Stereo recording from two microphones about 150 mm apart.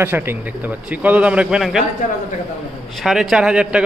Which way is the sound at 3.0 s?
Centre (ahead or behind).